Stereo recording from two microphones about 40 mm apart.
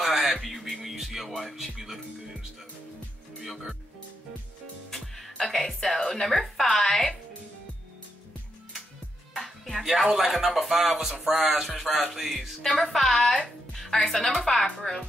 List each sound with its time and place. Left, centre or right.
0.3 s music: centre
3.3 s speech: centre
4.9 s music: centre
5.4 s a woman's voice: centre
9.3 s speech: centre
12.8 s speech: centre
13.3 s music: centre
14.0 s speech: centre